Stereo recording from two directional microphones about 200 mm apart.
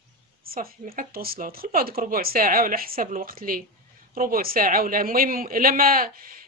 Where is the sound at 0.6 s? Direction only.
45° right (ahead or behind).